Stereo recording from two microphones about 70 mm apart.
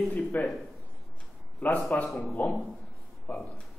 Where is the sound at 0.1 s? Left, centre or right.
Left.